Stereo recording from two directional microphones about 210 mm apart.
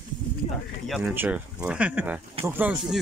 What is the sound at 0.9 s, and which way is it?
A man's voice, 5° right (ahead or behind).